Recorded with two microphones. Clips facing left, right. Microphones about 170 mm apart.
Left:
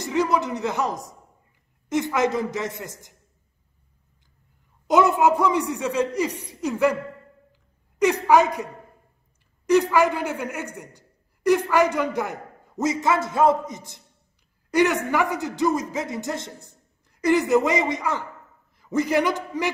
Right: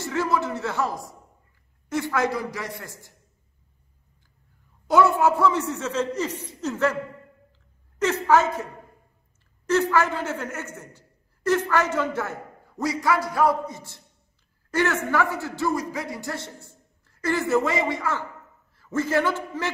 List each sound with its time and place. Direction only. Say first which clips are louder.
0.0 s a man's voice: left 2 dB; 15° left (ahead or behind)
4.8 s a man's voice: left 1 dB; 20° left (ahead or behind)
8.0 s a man's voice: left 3 dB; 15° left (ahead or behind)
9.7 s a man's voice: left 3 dB; 15° left (ahead or behind)